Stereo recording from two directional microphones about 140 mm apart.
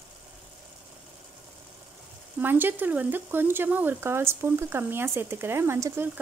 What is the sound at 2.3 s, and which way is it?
Speech, 15° right (ahead or behind).